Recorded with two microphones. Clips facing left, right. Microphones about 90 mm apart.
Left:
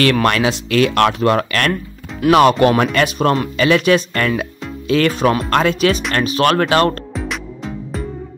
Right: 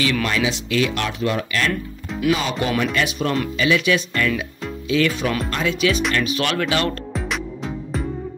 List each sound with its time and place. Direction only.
0.0 s speech: 60° left (ahead or behind)
2.8 s speech: 55° left (ahead or behind)
7.2 s music: centre (ahead or behind)